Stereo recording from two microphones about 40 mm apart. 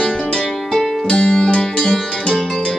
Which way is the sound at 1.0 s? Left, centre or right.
Left.